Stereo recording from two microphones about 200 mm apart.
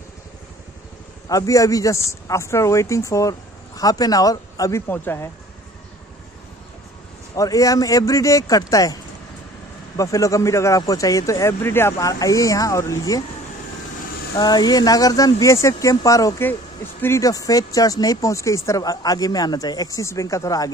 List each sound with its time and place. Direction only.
1.3 s speech: 15° left (ahead or behind)
7.3 s speech: 15° left (ahead or behind)
9.9 s speech: 15° left (ahead or behind)
14.3 s speech: 20° left (ahead or behind)